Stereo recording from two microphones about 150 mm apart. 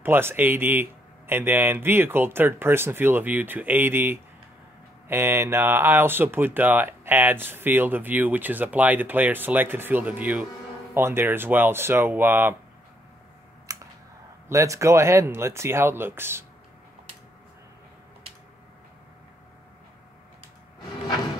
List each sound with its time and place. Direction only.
0.0 s speech: 15° right (ahead or behind)
13.7 s a sound: 20° right (ahead or behind)
14.5 s speech: 20° right (ahead or behind)